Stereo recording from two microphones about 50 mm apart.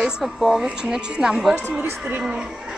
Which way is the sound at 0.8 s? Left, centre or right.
Centre.